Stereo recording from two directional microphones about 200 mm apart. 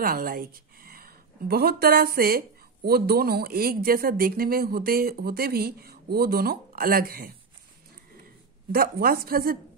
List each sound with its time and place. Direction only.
0.0 s a woman's voice: 45° right (ahead or behind)
8.7 s a woman's voice: 50° right (ahead or behind)